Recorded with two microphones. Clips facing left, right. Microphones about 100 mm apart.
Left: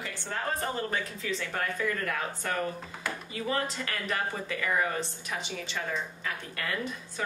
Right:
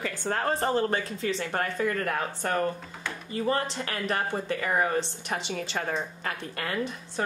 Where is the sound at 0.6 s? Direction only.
30° right (ahead or behind).